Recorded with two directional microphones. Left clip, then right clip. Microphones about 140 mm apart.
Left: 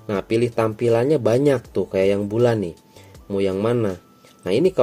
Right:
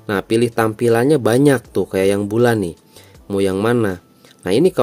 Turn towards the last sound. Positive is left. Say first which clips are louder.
# right 4 dB
turn(degrees=-35)  # may be behind; listen again after turning